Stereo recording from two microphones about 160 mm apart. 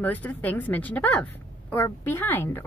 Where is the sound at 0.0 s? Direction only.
10° left (ahead or behind).